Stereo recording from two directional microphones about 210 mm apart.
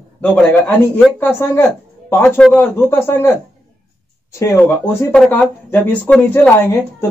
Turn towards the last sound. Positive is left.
turn(degrees=10)  # may be behind; listen again after turning